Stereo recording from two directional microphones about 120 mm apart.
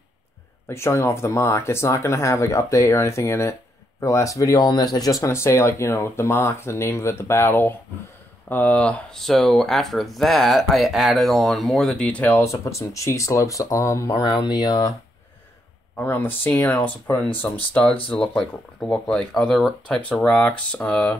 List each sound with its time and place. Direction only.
0.7 s speech: 20° left (ahead or behind)
12.4 s speech: 25° left (ahead or behind)
16.0 s speech: 15° left (ahead or behind)